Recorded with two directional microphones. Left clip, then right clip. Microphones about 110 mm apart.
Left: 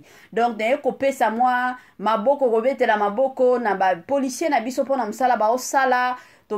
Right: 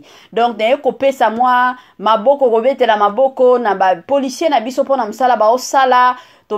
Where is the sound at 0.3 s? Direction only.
20° right (ahead or behind).